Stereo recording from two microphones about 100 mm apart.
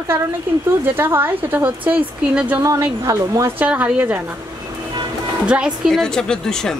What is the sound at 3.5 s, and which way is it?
Speech, 15° right (ahead or behind).